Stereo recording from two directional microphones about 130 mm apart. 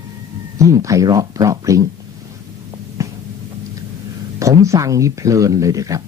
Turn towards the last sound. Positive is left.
turn(degrees=-25)  # may be behind; listen again after turning